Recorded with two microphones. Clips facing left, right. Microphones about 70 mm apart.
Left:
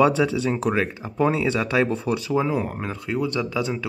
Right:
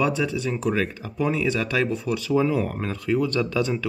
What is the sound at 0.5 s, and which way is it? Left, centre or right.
Speech, left.